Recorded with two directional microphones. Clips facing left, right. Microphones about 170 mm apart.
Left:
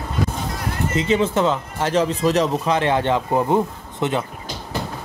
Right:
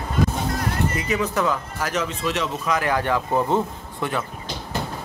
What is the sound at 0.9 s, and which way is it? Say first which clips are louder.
Speech: left 5 dB; 25° left (ahead or behind).